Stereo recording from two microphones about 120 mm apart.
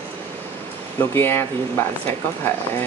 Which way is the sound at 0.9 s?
20° left (ahead or behind).